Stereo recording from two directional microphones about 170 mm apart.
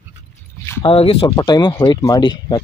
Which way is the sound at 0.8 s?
35° left (ahead or behind).